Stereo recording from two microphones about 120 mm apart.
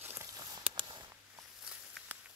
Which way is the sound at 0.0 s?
20° right (ahead or behind).